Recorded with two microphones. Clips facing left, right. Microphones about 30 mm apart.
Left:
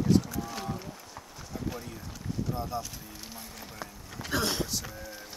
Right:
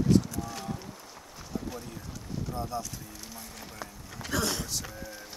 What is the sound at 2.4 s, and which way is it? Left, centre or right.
Horse, centre.